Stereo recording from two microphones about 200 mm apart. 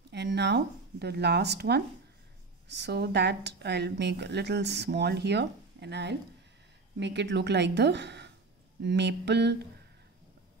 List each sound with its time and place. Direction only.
0.1 s speech: 60° right (ahead or behind)